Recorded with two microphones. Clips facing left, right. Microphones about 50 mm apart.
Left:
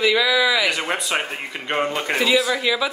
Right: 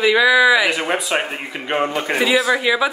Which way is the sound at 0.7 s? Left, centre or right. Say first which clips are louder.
Right 3 dB; centre.